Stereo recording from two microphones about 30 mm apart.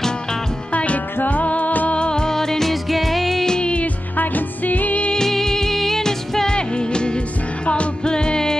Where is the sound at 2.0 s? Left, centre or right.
Left.